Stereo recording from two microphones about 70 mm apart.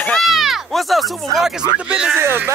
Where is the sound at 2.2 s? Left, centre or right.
Right.